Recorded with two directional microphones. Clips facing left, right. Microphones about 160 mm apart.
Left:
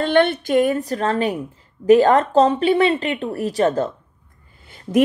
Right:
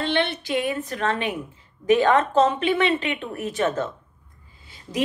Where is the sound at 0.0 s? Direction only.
50° left (ahead or behind).